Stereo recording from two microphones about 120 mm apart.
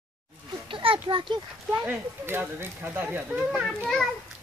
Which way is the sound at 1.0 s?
40° right (ahead or behind).